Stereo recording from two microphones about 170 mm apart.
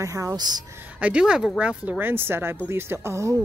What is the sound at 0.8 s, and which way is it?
A woman's voice, 10° right (ahead or behind).